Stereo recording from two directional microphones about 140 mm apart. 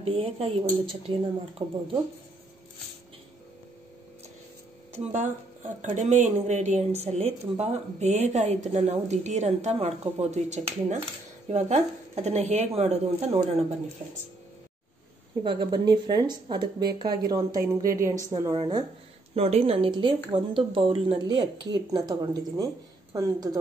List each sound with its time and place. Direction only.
0.0 s speech: 45° right (ahead or behind)
5.6 s a woman's voice: 60° right (ahead or behind)
15.4 s a woman's voice: 35° right (ahead or behind)
18.3 s speech: 35° right (ahead or behind)
19.3 s a woman's voice: 45° right (ahead or behind); by 23.6 s 25° right (ahead or behind)